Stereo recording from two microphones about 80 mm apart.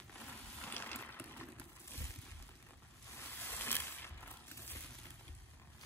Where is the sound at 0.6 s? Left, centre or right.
Left.